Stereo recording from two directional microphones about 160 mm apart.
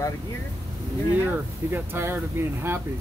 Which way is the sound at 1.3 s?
15° right (ahead or behind).